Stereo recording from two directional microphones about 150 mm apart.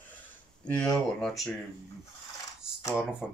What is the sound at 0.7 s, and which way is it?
Speech, 5° left (ahead or behind).